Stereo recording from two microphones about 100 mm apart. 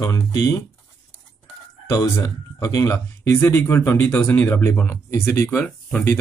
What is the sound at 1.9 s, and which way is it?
Speech, 40° left (ahead or behind).